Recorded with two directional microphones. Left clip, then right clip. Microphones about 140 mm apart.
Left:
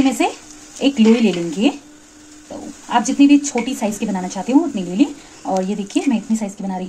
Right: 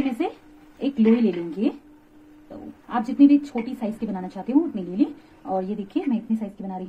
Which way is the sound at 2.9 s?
15° left (ahead or behind).